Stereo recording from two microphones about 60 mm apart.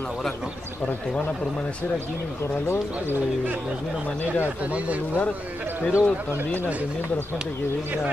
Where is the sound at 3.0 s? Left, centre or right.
Right.